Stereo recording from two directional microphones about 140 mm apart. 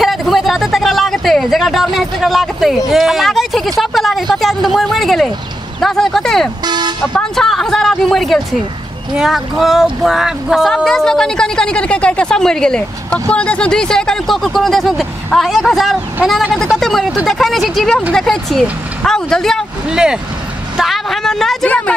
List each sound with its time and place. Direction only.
0.0 s speech: centre (ahead or behind)
6.6 s speech: 30° right (ahead or behind)
7.0 s a woman's voice: centre (ahead or behind)